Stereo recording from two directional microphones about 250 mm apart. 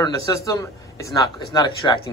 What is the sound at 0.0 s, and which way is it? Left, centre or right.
A man's voice, centre.